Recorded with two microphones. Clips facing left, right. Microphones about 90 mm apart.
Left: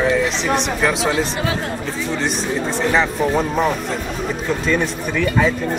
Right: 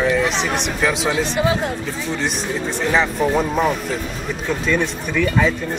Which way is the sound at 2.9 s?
Centre (ahead or behind).